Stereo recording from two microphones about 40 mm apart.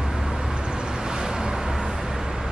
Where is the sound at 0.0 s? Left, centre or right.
Centre.